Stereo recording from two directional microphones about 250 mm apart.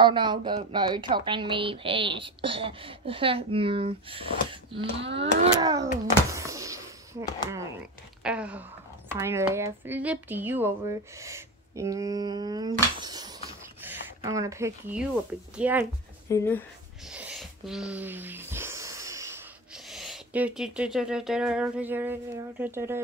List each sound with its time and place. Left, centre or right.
0.0 s speech: centre
6.3 s a sound: centre
8.2 s speech: centre
16.3 s speech: centre
17.1 s speech: centre